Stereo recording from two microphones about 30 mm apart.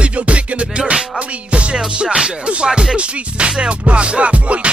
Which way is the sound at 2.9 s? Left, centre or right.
Right.